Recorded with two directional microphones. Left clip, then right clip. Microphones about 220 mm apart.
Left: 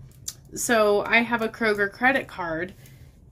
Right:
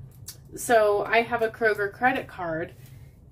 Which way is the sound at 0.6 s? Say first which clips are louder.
Even; 50° left (ahead or behind).